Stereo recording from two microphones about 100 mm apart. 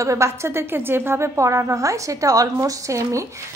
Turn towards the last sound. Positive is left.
turn(degrees=-30)  # may be behind; listen again after turning